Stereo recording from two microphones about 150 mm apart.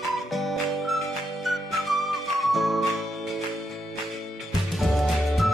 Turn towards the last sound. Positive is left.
turn(degrees=0)  # may be behind; listen again after turning